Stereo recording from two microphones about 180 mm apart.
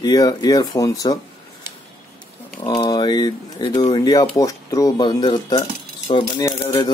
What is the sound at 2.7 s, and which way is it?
Speech, 25° left (ahead or behind).